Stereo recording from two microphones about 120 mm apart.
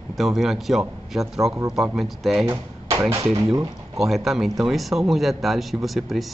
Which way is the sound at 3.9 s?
Centre (ahead or behind).